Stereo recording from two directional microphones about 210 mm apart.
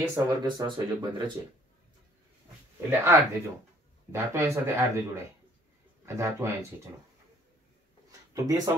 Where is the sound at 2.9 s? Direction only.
10° right (ahead or behind).